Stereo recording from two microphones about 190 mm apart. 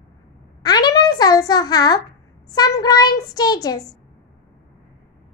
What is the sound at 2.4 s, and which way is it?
A child's voice, 20° left (ahead or behind).